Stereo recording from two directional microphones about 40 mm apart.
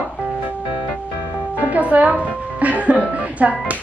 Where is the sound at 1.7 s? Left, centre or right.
Right.